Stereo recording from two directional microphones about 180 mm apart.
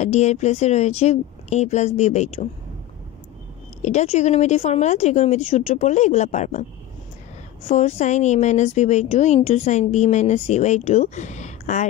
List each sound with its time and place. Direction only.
0.0 s a woman's voice: 40° left (ahead or behind)
3.8 s a woman's voice: 35° left (ahead or behind)
7.6 s a woman's voice: 40° left (ahead or behind)